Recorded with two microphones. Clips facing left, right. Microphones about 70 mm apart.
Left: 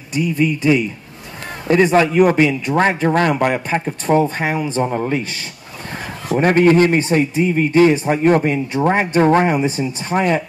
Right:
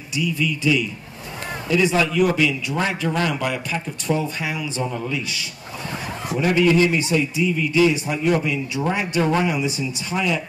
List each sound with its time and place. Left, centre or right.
0.1 s a man's voice: left